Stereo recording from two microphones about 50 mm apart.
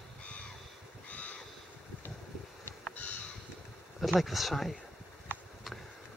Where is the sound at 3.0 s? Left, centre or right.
Left.